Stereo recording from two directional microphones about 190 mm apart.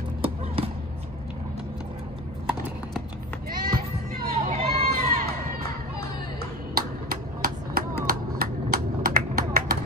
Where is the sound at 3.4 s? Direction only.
50° right (ahead or behind).